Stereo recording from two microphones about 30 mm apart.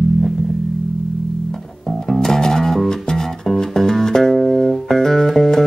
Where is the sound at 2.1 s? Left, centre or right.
Centre.